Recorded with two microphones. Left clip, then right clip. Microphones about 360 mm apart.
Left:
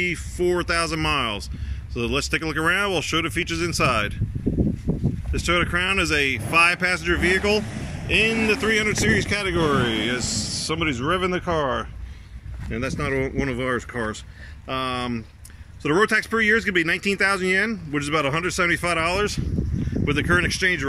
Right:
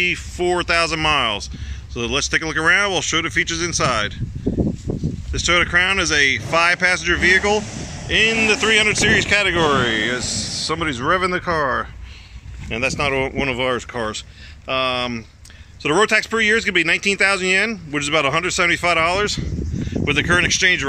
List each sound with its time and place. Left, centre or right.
0.0 s speech: centre
4.6 s a sound: right
5.3 s speech: centre